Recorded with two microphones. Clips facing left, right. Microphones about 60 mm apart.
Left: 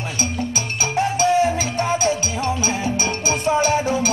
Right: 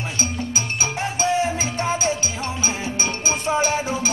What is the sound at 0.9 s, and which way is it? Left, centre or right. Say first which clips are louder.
Music: left 5 dB; right.